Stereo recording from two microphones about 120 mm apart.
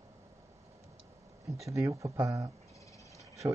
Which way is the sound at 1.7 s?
25° right (ahead or behind).